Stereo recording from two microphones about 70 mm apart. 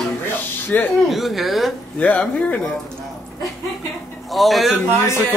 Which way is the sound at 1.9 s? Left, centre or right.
Left.